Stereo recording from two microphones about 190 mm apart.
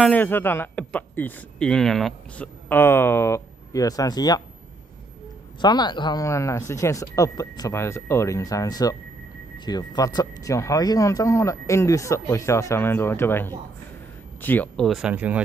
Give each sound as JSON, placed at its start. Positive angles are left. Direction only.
{"t": 0.0, "sound": "speech", "side_deg": 10}
{"t": 5.6, "sound": "speech", "side_deg": 25}